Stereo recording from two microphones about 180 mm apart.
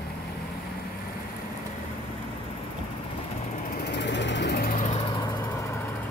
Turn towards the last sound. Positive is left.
turn(degrees=15)  # may be behind; listen again after turning